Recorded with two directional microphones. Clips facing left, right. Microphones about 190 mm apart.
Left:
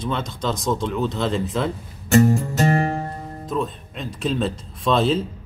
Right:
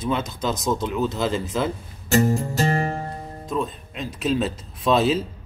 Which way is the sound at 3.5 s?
Centre (ahead or behind).